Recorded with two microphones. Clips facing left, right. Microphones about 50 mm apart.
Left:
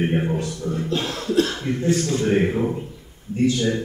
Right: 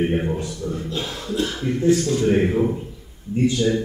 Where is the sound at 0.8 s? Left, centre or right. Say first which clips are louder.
Left 3 dB; left.